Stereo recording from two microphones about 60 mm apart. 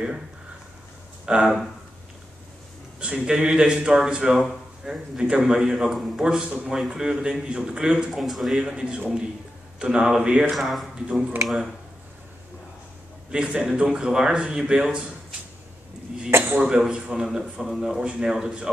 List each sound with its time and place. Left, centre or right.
1.2 s speech: centre
3.0 s speech: centre
4.4 s a sound: centre
5.1 s speech: centre
8.1 s speech: centre
8.5 s speech: centre
10.5 s speech: centre
13.3 s speech: centre
16.3 s a sound: right
16.5 s speech: centre